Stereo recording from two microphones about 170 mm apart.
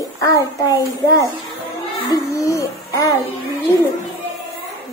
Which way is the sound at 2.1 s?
20° left (ahead or behind).